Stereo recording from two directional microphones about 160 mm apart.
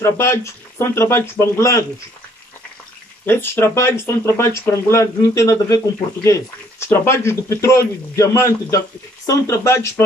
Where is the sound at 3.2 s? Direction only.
15° left (ahead or behind).